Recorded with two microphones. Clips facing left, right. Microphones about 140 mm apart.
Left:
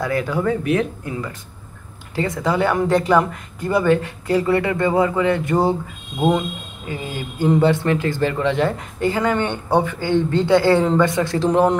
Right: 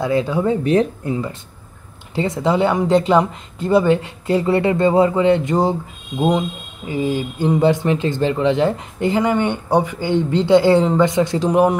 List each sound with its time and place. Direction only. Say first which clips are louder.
0.0 s speech: right 3 dB; 20° right (ahead or behind)
6.9 s speech: right 8 dB; 15° right (ahead or behind)